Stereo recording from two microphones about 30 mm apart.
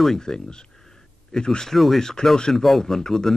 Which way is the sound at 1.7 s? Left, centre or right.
Centre.